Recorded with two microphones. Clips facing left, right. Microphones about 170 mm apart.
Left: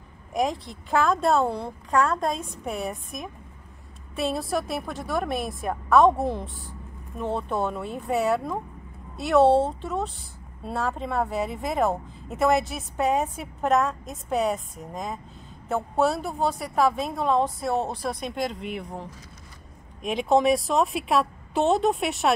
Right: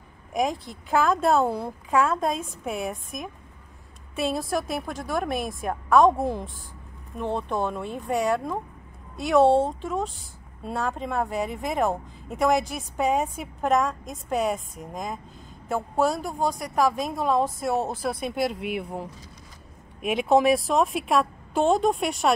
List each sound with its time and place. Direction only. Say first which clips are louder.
0.3 s speech: even; centre (ahead or behind)
16.3 s speech: even; 5° left (ahead or behind)